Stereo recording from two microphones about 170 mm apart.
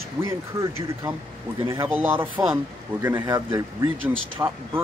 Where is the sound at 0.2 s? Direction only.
15° right (ahead or behind).